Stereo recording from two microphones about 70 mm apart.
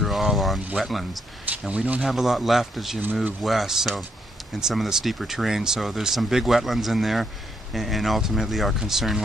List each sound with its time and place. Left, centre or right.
0.0 s vehicle: centre
0.7 s speech: centre
1.7 s speech: centre
2.0 s speech: centre